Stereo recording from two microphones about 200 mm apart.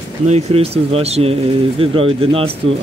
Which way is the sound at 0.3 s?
30° right (ahead or behind).